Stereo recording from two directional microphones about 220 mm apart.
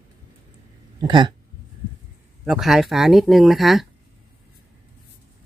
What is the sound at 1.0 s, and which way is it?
Speech, 20° right (ahead or behind).